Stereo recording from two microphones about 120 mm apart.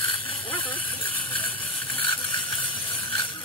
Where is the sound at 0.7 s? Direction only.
15° left (ahead or behind).